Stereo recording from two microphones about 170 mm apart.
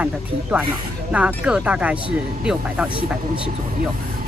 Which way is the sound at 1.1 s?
5° right (ahead or behind).